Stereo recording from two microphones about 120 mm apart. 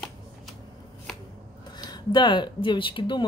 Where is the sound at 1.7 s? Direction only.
35° left (ahead or behind).